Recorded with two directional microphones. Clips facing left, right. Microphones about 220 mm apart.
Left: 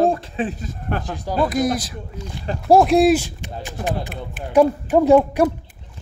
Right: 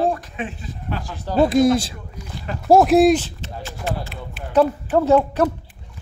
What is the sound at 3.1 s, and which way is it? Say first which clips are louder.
A woman's voice: left 1 dB; 15° left (ahead or behind).